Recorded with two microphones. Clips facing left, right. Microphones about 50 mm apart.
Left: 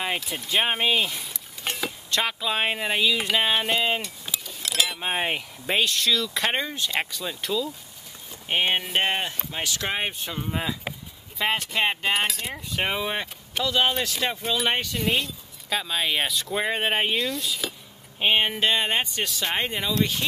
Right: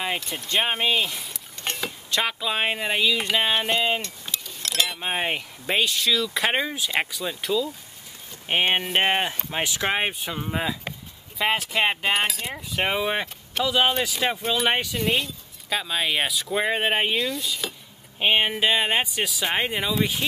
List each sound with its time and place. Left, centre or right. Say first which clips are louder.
0.0 s speech: even; centre
8.5 s speech: right 2 dB; centre